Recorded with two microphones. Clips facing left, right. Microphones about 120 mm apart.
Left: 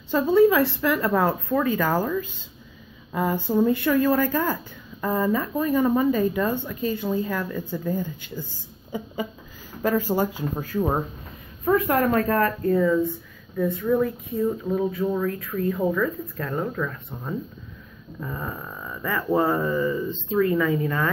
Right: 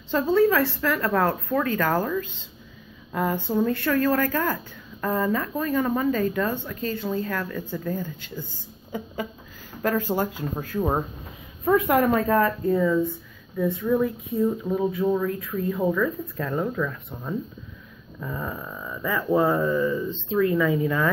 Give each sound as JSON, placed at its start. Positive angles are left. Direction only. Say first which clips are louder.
{"t": 0.1, "sound": "speech", "louder": "left 2 dB", "side_deg": 10}
{"t": 14.0, "sound": "speech", "louder": "right 1 dB", "side_deg": 0}